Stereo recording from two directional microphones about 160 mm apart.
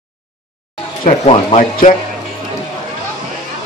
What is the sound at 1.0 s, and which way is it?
Speech, 40° left (ahead or behind).